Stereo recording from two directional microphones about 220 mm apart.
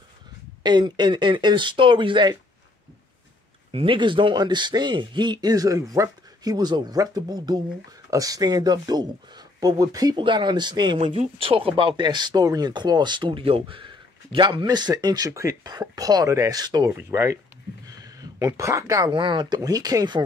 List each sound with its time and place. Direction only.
0.7 s speech: 20° right (ahead or behind)
3.7 s speech: 25° right (ahead or behind)